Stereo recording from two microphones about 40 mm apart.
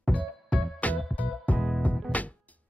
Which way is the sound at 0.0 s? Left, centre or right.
Left.